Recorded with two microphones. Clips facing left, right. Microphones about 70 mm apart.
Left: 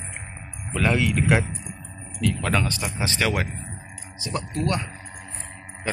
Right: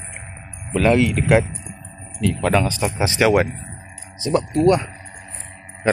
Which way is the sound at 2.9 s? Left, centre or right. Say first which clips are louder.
Right 9 dB; centre.